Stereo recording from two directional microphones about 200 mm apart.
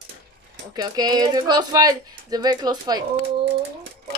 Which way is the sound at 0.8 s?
20° right (ahead or behind).